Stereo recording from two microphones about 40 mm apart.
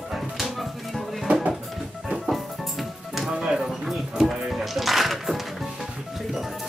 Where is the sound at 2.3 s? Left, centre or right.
Centre.